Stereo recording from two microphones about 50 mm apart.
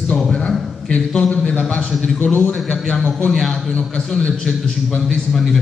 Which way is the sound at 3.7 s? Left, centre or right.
Centre.